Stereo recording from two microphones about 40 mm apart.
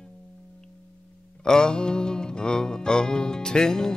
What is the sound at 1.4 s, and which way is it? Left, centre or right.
Music, centre.